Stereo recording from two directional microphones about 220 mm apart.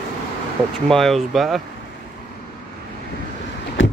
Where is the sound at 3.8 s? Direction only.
60° left (ahead or behind).